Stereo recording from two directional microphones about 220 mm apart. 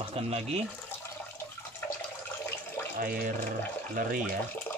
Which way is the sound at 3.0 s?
35° right (ahead or behind).